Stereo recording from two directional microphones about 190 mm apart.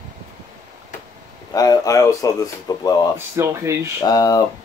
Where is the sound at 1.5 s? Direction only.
20° left (ahead or behind).